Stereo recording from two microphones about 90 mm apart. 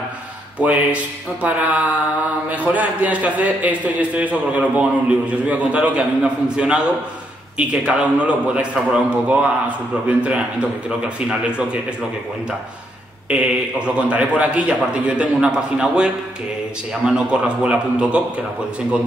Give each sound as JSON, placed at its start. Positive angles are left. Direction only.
{"t": 0.6, "sound": "a man's voice", "side_deg": -15}
{"t": 13.3, "sound": "a man's voice", "side_deg": -10}